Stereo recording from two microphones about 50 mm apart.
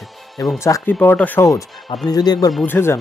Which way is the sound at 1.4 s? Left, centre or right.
Left.